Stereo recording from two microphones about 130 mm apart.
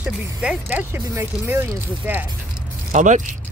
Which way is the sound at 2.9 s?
70° right (ahead or behind).